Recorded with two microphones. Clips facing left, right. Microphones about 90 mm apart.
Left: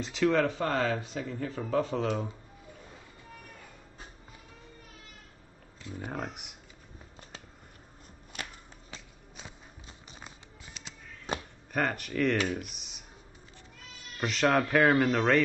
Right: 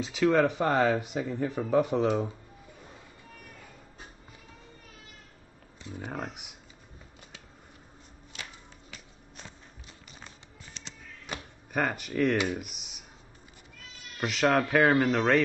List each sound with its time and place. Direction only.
0.0 s speech: 5° right (ahead or behind)
0.5 s speech: 15° right (ahead or behind)
6.0 s speech: centre (ahead or behind)
10.2 s music: 5° left (ahead or behind)
11.3 s a sound: 30° left (ahead or behind)
11.7 s speech: 5° right (ahead or behind)
14.2 s speech: 5° right (ahead or behind)